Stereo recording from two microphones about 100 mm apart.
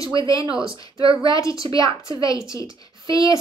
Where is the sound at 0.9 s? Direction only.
60° right (ahead or behind).